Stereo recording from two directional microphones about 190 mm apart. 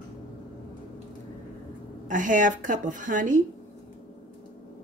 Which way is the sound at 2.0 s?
45° right (ahead or behind).